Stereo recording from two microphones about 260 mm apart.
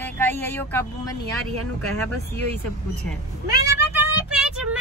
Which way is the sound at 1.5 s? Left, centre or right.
Right.